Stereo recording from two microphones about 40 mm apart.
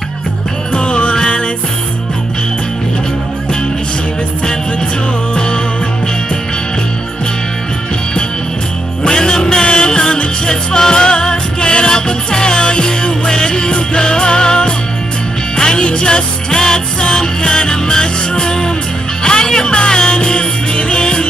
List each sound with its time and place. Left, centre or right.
0.7 s music: left
9.0 s music: centre